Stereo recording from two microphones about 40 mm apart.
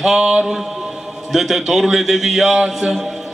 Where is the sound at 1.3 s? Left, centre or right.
Centre.